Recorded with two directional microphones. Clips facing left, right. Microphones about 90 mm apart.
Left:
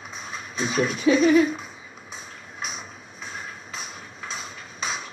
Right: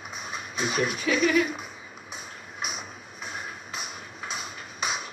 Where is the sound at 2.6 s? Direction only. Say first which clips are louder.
Even; 10° right (ahead or behind).